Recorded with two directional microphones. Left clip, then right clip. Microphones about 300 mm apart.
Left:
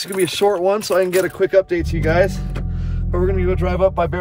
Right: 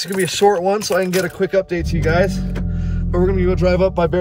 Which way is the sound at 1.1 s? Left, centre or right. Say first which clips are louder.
Left 2 dB; left.